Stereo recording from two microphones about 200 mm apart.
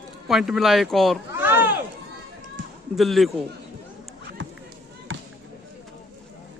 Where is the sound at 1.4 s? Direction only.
10° right (ahead or behind).